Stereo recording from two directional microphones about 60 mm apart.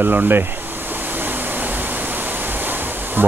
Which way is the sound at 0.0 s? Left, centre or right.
Right.